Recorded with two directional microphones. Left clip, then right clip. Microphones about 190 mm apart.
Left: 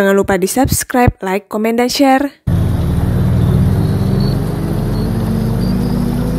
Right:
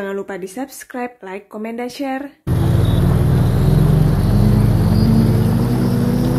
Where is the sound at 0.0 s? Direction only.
60° left (ahead or behind).